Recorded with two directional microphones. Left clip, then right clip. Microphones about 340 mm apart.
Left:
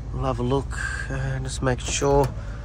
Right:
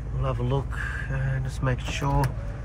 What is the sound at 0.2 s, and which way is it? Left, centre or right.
Speech, centre.